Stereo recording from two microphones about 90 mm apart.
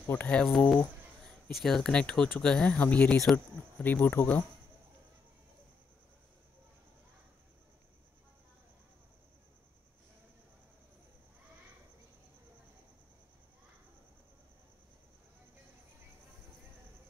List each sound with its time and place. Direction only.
0.0 s speech: 20° left (ahead or behind)
1.5 s speech: centre (ahead or behind)
3.7 s speech: 20° left (ahead or behind)